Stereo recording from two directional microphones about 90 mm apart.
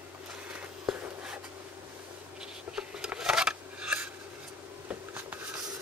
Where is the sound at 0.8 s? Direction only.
10° right (ahead or behind).